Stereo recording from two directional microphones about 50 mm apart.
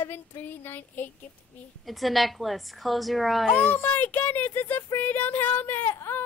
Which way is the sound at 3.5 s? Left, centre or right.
Left.